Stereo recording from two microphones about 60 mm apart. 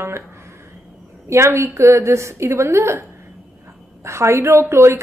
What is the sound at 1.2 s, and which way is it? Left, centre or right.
A woman's voice, right.